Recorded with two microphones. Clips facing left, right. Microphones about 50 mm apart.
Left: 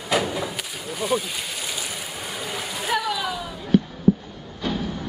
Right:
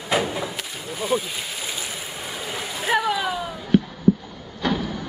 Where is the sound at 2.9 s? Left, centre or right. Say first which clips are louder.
Right 3 dB; centre.